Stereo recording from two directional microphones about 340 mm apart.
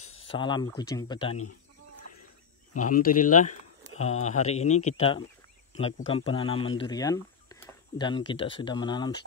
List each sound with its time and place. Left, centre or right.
0.0 s a sound: left
0.3 s speech: centre
2.8 s speech: left